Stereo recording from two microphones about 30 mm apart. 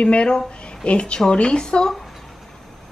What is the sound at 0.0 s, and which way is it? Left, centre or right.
Speech, left.